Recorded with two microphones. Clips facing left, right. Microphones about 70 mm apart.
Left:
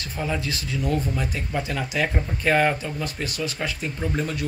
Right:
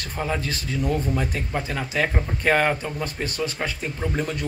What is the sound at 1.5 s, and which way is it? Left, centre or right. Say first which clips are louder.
Speech: even; right.